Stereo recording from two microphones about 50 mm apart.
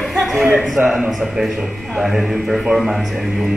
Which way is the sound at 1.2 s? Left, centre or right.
Centre.